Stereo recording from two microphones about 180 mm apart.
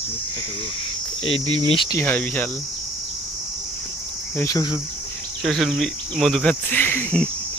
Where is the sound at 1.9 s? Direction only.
10° left (ahead or behind).